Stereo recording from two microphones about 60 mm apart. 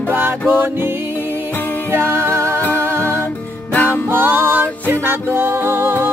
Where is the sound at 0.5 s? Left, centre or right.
Right.